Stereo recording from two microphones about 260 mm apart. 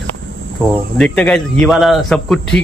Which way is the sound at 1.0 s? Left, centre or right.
Centre.